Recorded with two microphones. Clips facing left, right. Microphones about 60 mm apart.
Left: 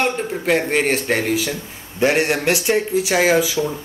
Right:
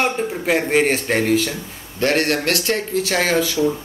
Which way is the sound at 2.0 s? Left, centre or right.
Centre.